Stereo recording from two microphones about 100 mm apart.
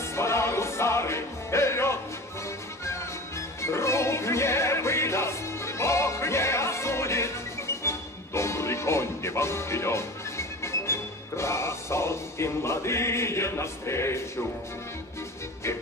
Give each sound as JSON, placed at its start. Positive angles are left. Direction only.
{"t": 0.1, "sound": "music", "side_deg": 25}